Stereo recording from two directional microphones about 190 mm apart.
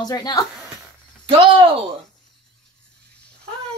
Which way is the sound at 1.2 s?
25° right (ahead or behind).